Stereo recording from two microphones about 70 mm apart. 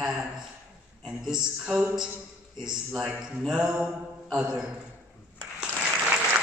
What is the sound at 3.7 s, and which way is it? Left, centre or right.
Mantra, centre.